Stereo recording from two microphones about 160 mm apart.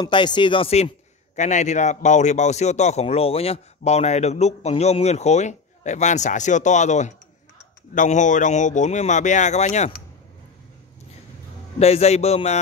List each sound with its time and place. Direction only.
0.0 s a man's voice: 30° left (ahead or behind); by 10.0 s 45° left (ahead or behind)
11.8 s a man's voice: 40° left (ahead or behind)